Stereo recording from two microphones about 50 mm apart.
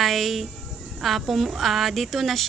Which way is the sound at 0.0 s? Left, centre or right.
Centre.